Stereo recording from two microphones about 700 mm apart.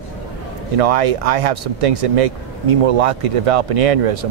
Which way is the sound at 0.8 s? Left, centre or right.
Right.